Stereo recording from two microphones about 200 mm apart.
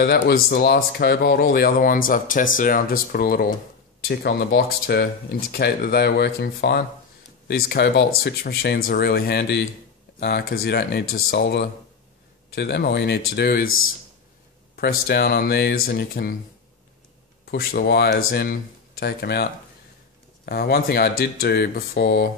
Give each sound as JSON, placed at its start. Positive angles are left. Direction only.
{"t": 0.0, "sound": "speech", "side_deg": 50}
{"t": 14.8, "sound": "speech", "side_deg": 50}
{"t": 17.5, "sound": "speech", "side_deg": 50}